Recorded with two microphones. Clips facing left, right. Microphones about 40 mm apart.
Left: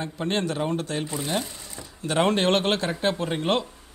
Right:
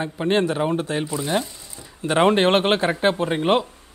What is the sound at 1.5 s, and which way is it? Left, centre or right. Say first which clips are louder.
Speech: left 2 dB; left.